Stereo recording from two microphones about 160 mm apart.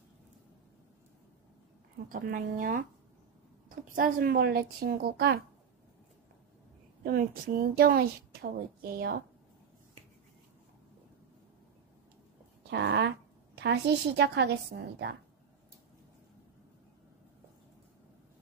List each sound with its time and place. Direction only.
2.0 s a woman's voice: 60° right (ahead or behind); by 5.4 s 80° right
7.0 s a woman's voice: 65° right (ahead or behind)
12.6 s a woman's voice: 90° right